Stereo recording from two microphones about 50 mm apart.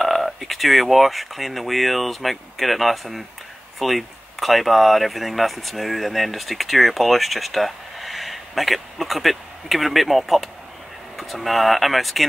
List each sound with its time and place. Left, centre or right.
0.0 s speech: centre